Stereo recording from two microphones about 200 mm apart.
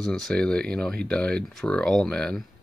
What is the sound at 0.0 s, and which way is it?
Speech, 5° left (ahead or behind).